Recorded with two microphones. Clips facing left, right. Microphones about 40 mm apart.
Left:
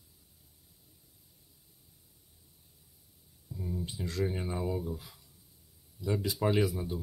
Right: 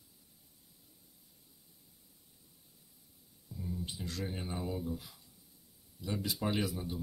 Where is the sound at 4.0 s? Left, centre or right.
Left.